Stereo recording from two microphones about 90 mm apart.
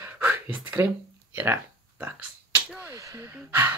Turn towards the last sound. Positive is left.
turn(degrees=-25)  # may be behind; listen again after turning